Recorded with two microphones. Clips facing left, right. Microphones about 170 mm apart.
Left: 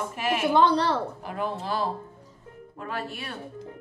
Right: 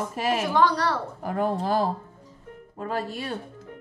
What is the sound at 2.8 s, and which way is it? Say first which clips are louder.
Music: right 4 dB; 35° right (ahead or behind).